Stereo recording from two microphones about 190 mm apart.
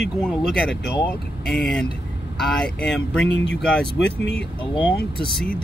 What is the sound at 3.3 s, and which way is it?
Speech, 70° left (ahead or behind).